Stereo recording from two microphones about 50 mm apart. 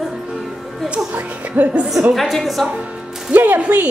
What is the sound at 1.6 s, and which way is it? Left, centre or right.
Speech, right.